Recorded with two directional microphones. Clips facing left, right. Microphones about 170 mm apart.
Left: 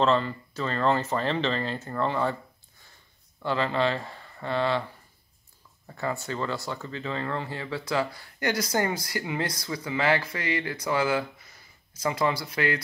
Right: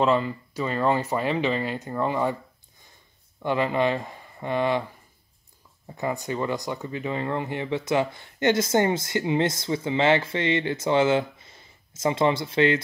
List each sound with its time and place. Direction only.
0.0 s speech: 10° right (ahead or behind)
3.4 s speech: 15° right (ahead or behind)
5.9 s speech: 15° right (ahead or behind)